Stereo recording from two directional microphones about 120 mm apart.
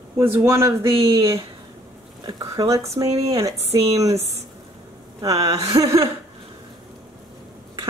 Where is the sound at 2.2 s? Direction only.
30° right (ahead or behind).